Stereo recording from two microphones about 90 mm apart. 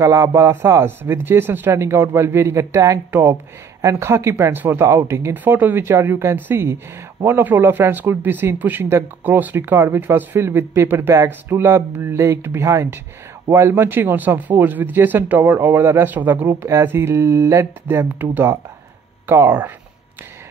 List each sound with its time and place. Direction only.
0.0 s a man's voice: 35° right (ahead or behind)
5.3 s speech: 20° right (ahead or behind)